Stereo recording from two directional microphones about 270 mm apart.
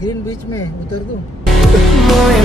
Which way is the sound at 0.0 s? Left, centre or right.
Centre.